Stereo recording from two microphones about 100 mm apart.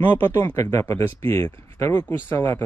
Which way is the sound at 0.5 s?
30° left (ahead or behind).